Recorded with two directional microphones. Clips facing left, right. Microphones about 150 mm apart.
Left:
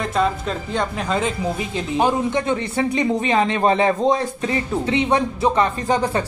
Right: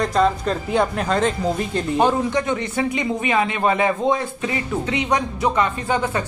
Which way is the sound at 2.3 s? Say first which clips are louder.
Left 1 dB; 30° left (ahead or behind).